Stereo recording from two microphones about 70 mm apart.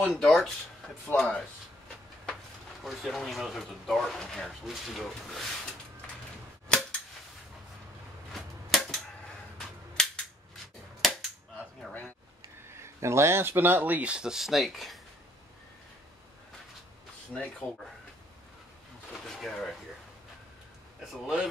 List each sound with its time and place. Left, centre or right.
0.0 s speech: centre
1.0 s rub: centre
2.8 s speech: centre
6.7 s cap gun: centre
8.3 s a sound: centre
10.0 s cap gun: centre
12.6 s speech: right; by 15.0 s centre
17.3 s rub: centre
19.2 s speech: centre
21.1 s speech: centre